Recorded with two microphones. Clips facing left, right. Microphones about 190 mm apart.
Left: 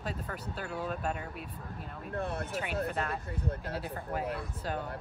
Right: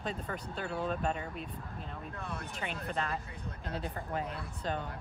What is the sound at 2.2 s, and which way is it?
Speech, 55° left (ahead or behind).